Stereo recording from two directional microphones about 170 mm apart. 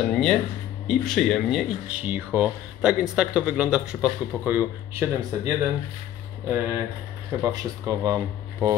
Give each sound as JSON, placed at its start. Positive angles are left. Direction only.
{"t": 0.0, "sound": "speech", "side_deg": 5}
{"t": 6.5, "sound": "speech", "side_deg": -15}